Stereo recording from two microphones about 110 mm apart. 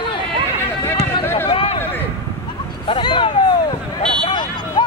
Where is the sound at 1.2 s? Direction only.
20° left (ahead or behind).